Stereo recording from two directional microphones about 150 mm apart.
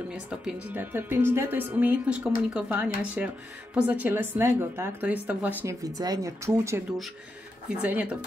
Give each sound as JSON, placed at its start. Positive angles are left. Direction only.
{"t": 0.1, "sound": "a woman's voice", "side_deg": -5}
{"t": 5.6, "sound": "speech", "side_deg": -20}
{"t": 7.8, "sound": "a woman's voice", "side_deg": -10}